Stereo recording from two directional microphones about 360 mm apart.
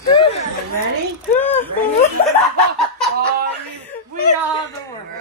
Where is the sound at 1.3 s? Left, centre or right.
Centre.